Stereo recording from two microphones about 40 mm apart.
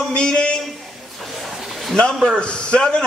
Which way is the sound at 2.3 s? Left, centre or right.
Left.